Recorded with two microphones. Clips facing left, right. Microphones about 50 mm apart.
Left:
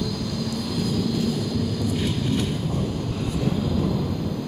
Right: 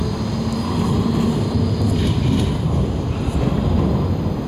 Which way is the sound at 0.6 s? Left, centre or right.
Right.